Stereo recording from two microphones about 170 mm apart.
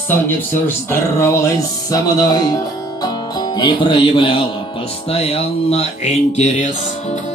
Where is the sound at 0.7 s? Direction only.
15° left (ahead or behind).